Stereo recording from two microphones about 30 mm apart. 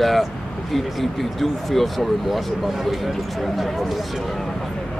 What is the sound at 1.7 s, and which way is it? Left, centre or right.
Speech, centre.